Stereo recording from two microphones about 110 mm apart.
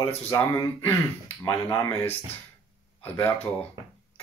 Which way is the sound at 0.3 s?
40° left (ahead or behind).